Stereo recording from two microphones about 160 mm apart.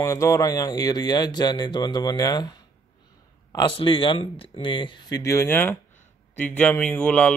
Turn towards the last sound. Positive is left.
turn(degrees=5)  # may be behind; listen again after turning